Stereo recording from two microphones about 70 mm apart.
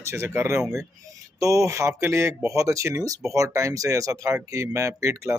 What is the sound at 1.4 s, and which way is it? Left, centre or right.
Speech, right.